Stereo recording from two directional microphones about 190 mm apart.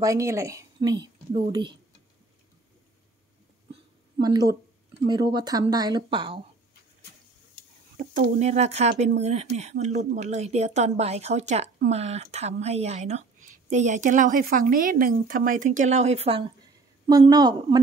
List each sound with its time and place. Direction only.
0.0 s a woman's voice: 15° right (ahead or behind)
4.2 s a woman's voice: 20° right (ahead or behind)
8.0 s a woman's voice: 40° right (ahead or behind)
17.1 s a woman's voice: 20° right (ahead or behind)